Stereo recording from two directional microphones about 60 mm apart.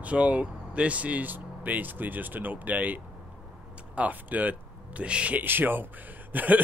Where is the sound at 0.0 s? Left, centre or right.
Right.